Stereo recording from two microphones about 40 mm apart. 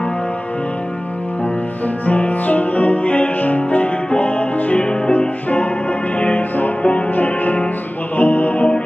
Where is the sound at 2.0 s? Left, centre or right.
Left.